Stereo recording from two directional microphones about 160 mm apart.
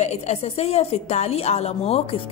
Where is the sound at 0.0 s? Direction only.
40° left (ahead or behind).